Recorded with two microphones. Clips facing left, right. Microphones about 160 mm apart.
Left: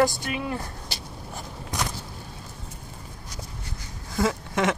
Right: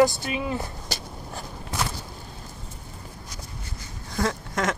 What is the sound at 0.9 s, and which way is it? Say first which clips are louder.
Writing: right 4 dB; 40° right (ahead or behind).